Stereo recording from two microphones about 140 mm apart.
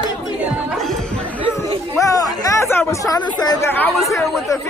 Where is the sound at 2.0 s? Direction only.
25° left (ahead or behind).